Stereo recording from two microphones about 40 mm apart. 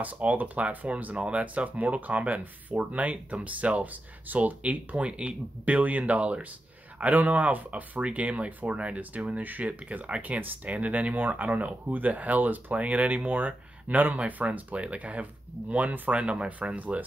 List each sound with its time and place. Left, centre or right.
0.0 s speech: right